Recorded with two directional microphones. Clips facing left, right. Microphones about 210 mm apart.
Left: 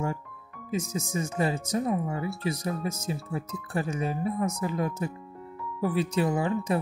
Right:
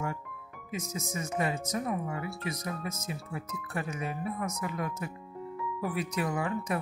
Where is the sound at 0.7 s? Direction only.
30° left (ahead or behind).